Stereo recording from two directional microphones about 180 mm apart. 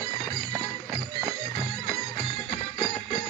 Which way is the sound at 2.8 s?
40° left (ahead or behind).